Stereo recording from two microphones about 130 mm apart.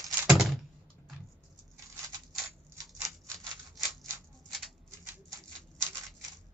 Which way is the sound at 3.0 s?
25° right (ahead or behind).